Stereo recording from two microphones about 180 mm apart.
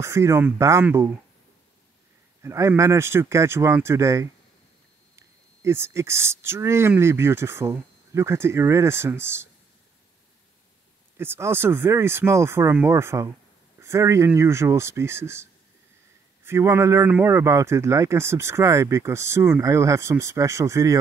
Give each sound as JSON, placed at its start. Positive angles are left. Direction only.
{"t": 0.0, "sound": "speech", "side_deg": -15}
{"t": 2.4, "sound": "speech", "side_deg": -15}
{"t": 11.1, "sound": "speech", "side_deg": -15}
{"t": 16.4, "sound": "speech", "side_deg": -15}